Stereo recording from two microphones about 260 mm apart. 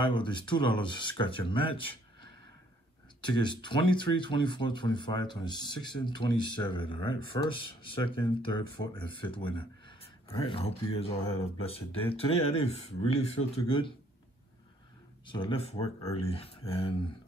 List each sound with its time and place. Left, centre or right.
0.0 s speech: centre
3.2 s speech: centre
15.2 s speech: centre